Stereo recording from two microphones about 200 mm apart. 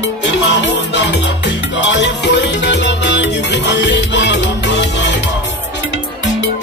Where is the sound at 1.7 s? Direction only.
60° left (ahead or behind).